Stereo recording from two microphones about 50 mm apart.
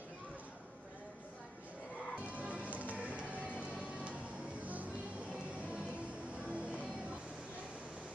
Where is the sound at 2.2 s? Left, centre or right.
Right.